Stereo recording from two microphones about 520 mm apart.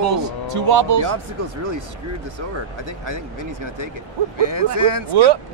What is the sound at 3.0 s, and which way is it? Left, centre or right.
Speech, right.